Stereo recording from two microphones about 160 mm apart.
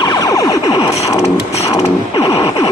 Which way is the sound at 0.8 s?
40° left (ahead or behind).